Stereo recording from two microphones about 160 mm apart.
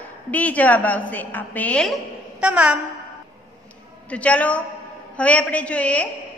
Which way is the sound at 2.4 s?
5° right (ahead or behind).